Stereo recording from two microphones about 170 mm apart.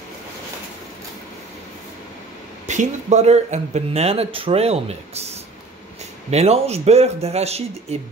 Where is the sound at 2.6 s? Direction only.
45° right (ahead or behind).